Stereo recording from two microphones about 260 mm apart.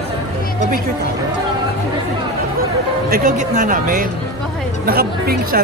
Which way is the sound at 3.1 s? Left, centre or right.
Right.